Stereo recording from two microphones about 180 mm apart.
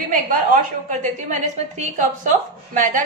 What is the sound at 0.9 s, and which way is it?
A woman's voice, 40° right (ahead or behind).